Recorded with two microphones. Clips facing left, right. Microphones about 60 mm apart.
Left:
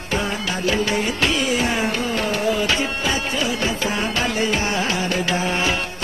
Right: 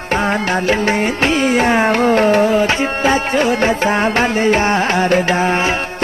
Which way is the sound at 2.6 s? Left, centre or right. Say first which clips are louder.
Right 7 dB; right.